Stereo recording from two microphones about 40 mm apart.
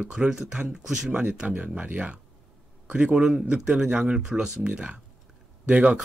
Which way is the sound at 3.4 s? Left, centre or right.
Right.